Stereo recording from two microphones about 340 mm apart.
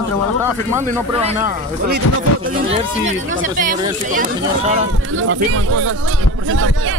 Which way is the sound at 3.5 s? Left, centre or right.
Right.